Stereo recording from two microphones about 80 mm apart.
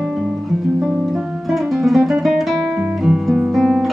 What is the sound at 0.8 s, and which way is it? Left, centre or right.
Guitar, centre.